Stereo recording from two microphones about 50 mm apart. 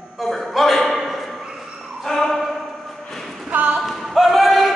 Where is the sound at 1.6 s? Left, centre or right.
Centre.